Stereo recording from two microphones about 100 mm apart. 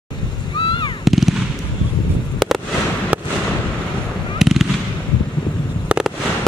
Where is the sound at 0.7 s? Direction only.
55° left (ahead or behind).